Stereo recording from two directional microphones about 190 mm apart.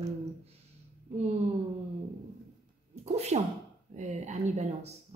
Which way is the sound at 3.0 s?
35° right (ahead or behind).